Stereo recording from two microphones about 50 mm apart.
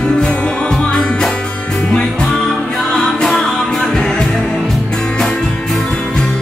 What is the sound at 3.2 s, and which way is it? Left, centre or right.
Music, centre.